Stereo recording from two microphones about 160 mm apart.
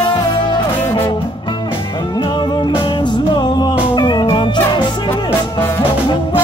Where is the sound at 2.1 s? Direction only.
25° left (ahead or behind).